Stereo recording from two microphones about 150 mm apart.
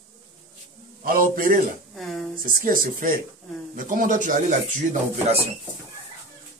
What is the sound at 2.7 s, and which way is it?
Speech, 65° right (ahead or behind).